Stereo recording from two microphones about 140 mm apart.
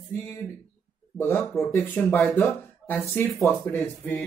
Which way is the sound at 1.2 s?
15° left (ahead or behind).